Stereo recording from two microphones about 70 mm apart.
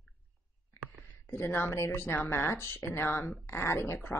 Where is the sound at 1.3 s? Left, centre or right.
Left.